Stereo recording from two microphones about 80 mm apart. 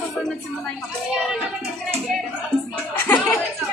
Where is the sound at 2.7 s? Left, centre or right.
Left.